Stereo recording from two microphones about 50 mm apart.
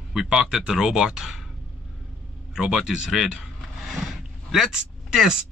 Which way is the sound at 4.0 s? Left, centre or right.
Centre.